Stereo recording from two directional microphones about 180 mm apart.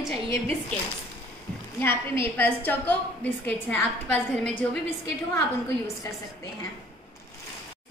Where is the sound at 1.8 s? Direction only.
15° left (ahead or behind).